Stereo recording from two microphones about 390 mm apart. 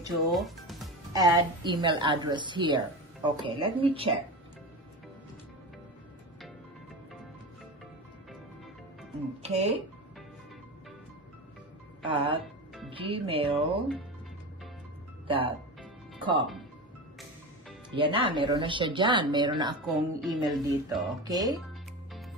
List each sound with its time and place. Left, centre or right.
0.0 s speech: centre
9.4 s speech: centre
12.1 s speech: centre
15.2 s speech: centre
15.8 s music: centre
17.9 s speech: centre
20.2 s speech: centre